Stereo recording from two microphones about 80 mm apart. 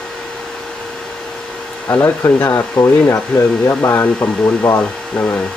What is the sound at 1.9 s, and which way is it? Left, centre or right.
Speech, left.